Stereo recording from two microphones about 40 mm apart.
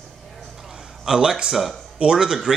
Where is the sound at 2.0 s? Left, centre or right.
Centre.